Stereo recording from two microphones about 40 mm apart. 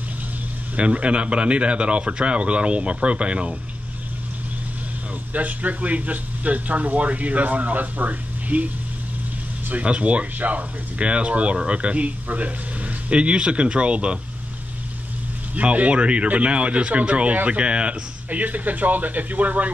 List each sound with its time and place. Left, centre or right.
0.7 s speech: right
5.3 s speech: right
9.8 s speech: right
15.5 s speech: right
18.3 s speech: right